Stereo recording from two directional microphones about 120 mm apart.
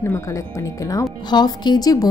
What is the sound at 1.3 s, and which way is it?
Speech, 35° left (ahead or behind).